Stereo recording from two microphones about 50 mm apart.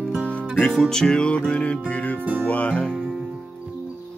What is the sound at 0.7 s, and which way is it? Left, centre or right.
Music, centre.